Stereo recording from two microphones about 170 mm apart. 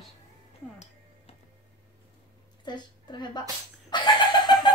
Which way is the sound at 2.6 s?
25° left (ahead or behind).